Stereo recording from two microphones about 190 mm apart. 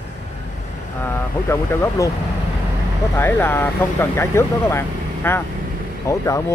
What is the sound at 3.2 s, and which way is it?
Speech, 10° left (ahead or behind).